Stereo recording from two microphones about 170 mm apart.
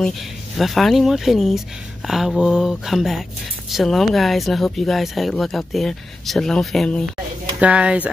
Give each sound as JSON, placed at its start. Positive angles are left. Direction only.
{"t": 0.6, "sound": "speech", "side_deg": 0}
{"t": 7.6, "sound": "speech", "side_deg": -5}